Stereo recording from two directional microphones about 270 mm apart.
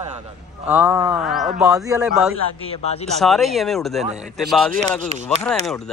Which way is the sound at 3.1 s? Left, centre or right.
Centre.